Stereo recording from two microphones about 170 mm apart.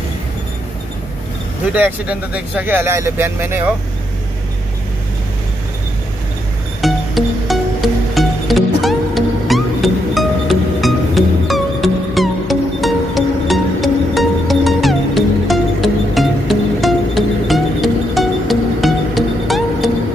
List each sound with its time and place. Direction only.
1.7 s speech: 10° right (ahead or behind)
6.8 s music: centre (ahead or behind)